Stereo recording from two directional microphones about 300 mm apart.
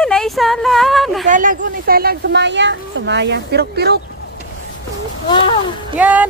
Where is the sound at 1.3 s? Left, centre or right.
Right.